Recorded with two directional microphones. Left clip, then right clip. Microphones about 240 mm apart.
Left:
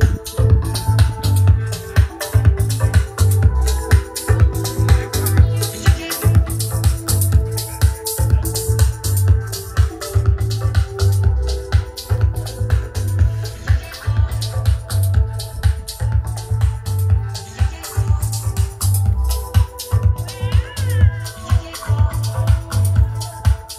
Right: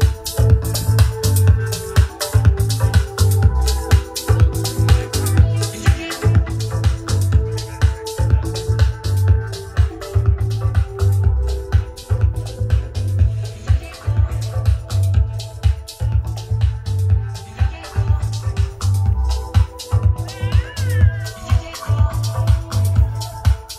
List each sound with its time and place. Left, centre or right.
0.3 s music: right
2.2 s music: centre
5.5 s music: left
19.5 s music: left